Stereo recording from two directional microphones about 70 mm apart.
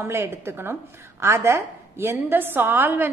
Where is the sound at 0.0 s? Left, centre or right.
Right.